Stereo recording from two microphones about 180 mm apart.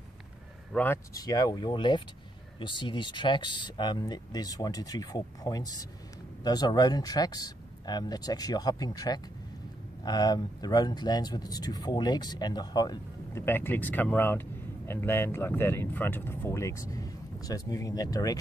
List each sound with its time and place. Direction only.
0.7 s speech: 15° left (ahead or behind)